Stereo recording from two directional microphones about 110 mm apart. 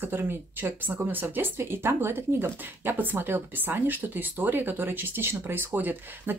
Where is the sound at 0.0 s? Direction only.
20° right (ahead or behind).